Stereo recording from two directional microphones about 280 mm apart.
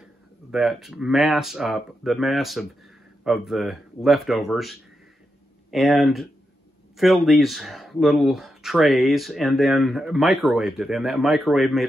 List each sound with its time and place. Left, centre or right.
0.5 s speech: centre